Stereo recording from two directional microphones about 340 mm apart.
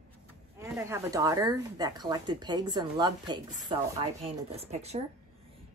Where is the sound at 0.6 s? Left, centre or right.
Centre.